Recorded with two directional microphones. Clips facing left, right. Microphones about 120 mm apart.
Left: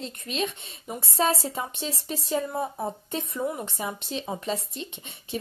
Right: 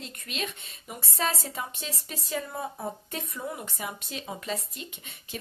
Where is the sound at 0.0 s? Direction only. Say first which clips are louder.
Left 6 dB; 30° left (ahead or behind).